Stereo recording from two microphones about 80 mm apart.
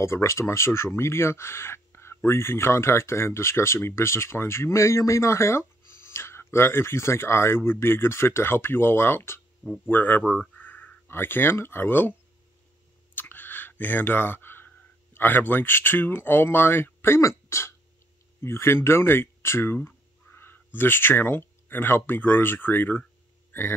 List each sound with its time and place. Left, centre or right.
0.0 s speech: left
10.2 s speech: centre
10.6 s speech: left
13.1 s clicking: left
15.1 s speech: left